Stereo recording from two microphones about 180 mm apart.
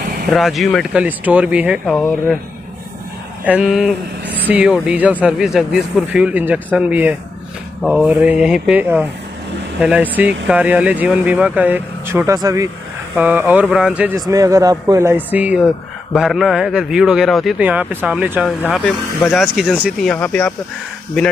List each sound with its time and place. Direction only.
0.3 s speech: centre (ahead or behind)
3.4 s speech: 5° right (ahead or behind)
14.1 s speech: 20° right (ahead or behind)
18.6 s speech: 10° left (ahead or behind)
20.1 s speech: 10° left (ahead or behind)